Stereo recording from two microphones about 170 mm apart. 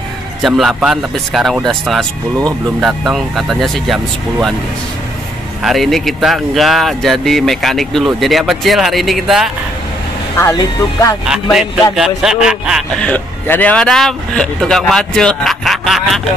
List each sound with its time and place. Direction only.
0.4 s a man's voice: centre (ahead or behind)
5.6 s a man's voice: centre (ahead or behind)
10.3 s speech: 20° left (ahead or behind)
11.9 s a man's voice: 5° right (ahead or behind)